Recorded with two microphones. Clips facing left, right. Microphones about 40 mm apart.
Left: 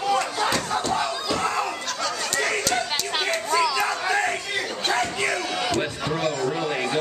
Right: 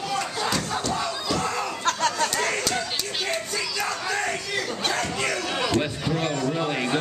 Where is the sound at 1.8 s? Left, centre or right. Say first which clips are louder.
Right 4 dB; right.